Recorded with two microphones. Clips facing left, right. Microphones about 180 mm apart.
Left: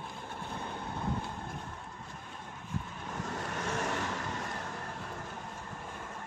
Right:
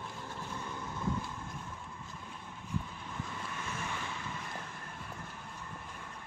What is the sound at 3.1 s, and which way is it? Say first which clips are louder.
Vehicle: left 5 dB; 75° left (ahead or behind).